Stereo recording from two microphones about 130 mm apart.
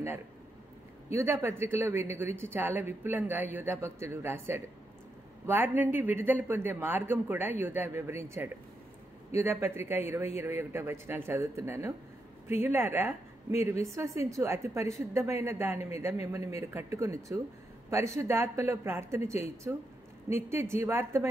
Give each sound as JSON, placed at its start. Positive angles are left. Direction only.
{"t": 1.1, "sound": "a woman's voice", "side_deg": -20}